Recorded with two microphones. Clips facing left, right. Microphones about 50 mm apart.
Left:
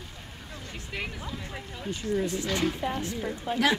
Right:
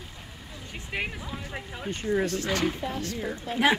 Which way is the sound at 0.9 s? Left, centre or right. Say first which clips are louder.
Right 3 dB; right.